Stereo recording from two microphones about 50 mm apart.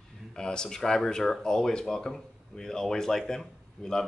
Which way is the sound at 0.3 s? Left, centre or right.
Centre.